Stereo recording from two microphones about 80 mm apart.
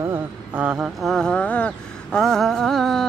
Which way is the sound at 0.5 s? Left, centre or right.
Centre.